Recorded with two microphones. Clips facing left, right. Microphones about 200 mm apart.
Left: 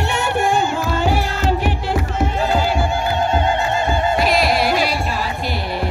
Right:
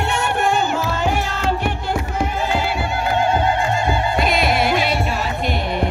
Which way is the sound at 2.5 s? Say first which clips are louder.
Left 3 dB; 40° left (ahead or behind).